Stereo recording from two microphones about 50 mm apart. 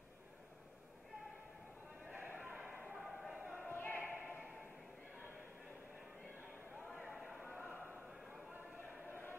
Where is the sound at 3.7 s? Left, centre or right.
Left.